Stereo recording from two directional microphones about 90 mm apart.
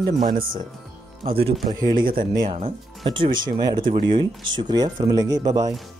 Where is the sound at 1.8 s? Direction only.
55° right (ahead or behind).